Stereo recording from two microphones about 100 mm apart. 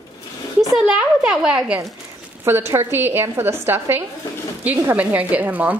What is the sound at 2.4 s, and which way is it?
A woman's voice, 25° right (ahead or behind).